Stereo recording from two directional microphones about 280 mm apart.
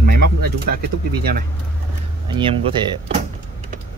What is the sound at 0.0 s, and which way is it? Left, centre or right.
Pigeon, right.